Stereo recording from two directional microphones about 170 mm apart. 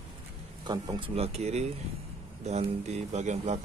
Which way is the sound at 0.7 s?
25° right (ahead or behind).